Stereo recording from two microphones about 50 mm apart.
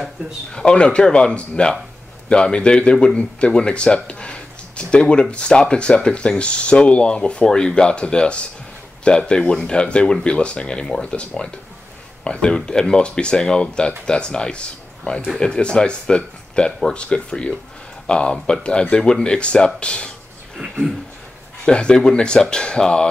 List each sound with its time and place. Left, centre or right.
0.5 s speech: centre
21.6 s speech: centre